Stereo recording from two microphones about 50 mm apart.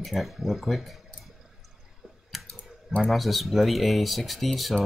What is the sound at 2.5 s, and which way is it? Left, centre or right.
Clicking, left.